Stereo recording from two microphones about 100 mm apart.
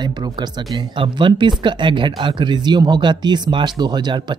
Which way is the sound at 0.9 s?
55° right (ahead or behind).